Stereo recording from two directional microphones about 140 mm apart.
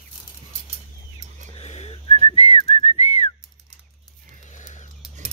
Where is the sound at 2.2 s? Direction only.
45° left (ahead or behind).